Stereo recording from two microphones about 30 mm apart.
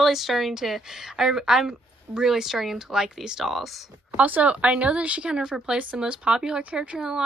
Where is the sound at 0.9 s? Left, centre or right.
Centre.